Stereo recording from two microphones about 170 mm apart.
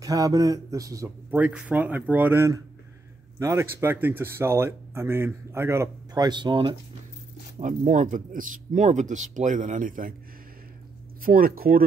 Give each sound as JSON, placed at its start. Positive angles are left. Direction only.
{"t": 0.0, "sound": "speech", "side_deg": -20}
{"t": 7.6, "sound": "speech", "side_deg": -50}
{"t": 11.2, "sound": "speech", "side_deg": -60}